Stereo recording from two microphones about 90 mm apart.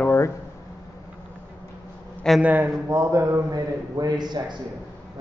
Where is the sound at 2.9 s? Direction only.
30° right (ahead or behind).